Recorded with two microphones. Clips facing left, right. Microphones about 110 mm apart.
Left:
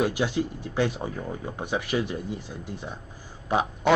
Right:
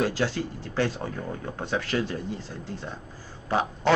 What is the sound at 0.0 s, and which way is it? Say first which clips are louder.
Speech: left 1 dB; 15° left (ahead or behind).